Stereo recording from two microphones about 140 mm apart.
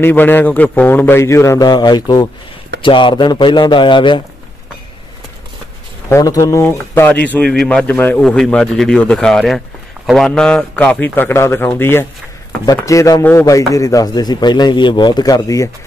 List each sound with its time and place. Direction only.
0.0 s a man's voice: 15° left (ahead or behind); by 4.2 s 35° left (ahead or behind)
6.0 s a man's voice: 20° left (ahead or behind)